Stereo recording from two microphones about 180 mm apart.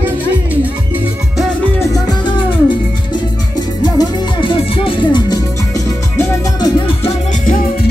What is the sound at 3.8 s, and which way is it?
Music, 25° left (ahead or behind).